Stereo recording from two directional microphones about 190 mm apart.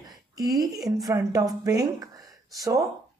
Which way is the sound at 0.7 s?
Centre (ahead or behind).